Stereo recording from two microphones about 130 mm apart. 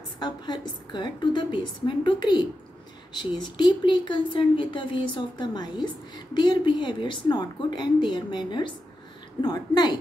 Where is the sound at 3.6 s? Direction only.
35° left (ahead or behind).